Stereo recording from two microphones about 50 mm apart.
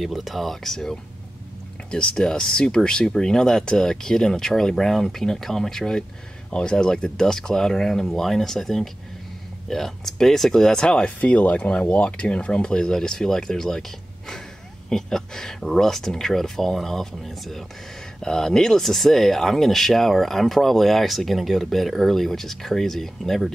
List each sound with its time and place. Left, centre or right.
0.0 s speech: centre
1.9 s speech: centre
11.1 s speech: left; by 23.5 s centre